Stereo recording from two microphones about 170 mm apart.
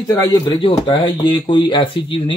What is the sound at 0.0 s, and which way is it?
A man's voice, 20° left (ahead or behind).